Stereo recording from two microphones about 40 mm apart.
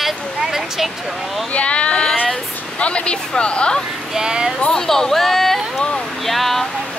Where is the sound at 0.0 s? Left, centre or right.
Centre.